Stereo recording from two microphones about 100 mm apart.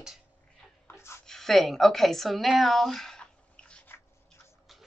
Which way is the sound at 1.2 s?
5° left (ahead or behind).